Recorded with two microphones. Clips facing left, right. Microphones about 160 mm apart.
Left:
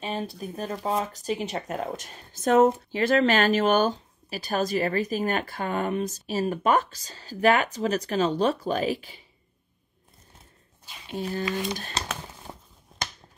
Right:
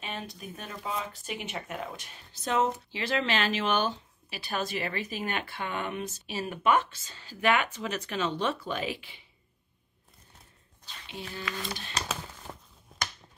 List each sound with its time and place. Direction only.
0.0 s speech: 35° left (ahead or behind)
11.1 s speech: 45° left (ahead or behind)
12.3 s a sound: 15° left (ahead or behind)